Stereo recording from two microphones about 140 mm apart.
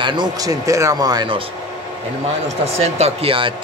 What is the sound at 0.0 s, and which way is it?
A man's voice, 30° right (ahead or behind).